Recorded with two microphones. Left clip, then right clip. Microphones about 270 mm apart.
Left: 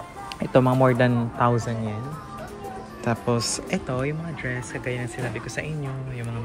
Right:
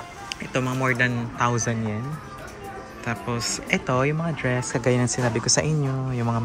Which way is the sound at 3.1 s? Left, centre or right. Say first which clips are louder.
Left 4 dB; centre.